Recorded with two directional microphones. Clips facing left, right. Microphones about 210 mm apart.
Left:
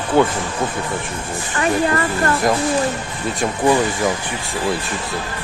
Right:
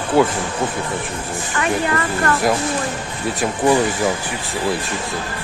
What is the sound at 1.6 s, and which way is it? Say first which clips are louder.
Speech: left 3 dB; 30° left (ahead or behind).